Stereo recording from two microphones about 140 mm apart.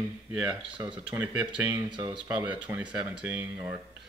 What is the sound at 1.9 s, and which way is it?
Speech, 35° right (ahead or behind).